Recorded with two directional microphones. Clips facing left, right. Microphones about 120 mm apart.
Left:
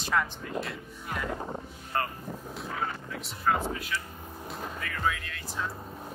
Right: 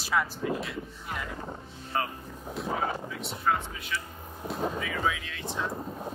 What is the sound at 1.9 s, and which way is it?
Speech, centre (ahead or behind).